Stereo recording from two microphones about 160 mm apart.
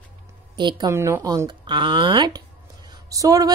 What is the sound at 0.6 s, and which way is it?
Speech, 30° right (ahead or behind).